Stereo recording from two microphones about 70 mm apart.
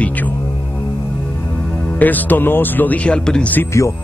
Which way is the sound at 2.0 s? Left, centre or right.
Left.